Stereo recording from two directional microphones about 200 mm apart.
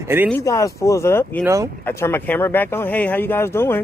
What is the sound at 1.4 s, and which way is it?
Speech, 15° right (ahead or behind).